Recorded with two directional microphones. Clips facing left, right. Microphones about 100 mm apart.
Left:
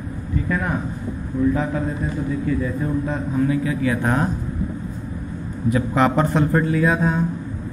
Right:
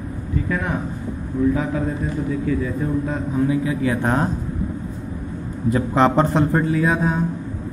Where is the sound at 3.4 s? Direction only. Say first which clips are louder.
Right 1 dB; 20° right (ahead or behind).